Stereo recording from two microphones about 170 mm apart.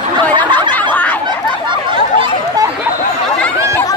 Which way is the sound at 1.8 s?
30° right (ahead or behind).